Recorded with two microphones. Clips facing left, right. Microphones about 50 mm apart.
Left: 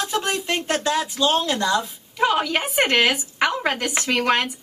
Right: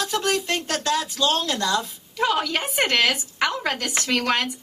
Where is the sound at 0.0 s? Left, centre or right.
Centre.